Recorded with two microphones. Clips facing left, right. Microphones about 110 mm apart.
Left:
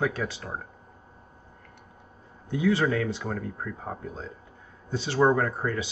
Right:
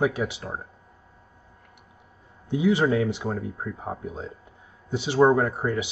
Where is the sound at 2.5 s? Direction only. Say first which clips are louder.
Right 3 dB; 15° right (ahead or behind).